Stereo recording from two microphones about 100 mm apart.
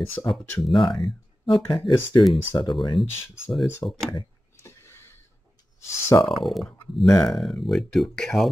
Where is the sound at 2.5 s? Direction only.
40° left (ahead or behind).